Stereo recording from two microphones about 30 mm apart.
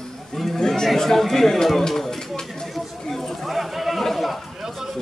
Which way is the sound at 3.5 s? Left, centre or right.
Centre.